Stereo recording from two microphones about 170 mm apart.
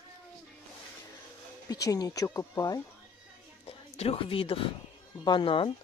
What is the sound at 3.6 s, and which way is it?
A woman's voice, 35° left (ahead or behind).